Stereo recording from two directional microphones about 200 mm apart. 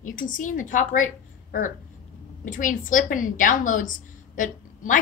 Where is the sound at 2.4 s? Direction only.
40° left (ahead or behind).